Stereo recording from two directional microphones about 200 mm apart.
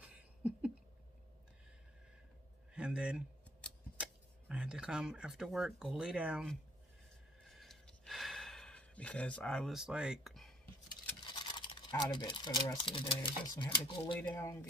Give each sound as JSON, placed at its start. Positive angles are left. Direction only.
{"t": 0.0, "sound": "a sound", "side_deg": -5}
{"t": 2.7, "sound": "speech", "side_deg": -5}
{"t": 7.4, "sound": "gasp", "side_deg": 0}
{"t": 11.2, "sound": "speech", "side_deg": 20}